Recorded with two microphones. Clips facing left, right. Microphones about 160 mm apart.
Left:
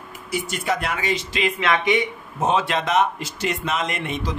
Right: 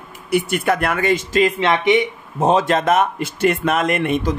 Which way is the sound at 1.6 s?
25° right (ahead or behind).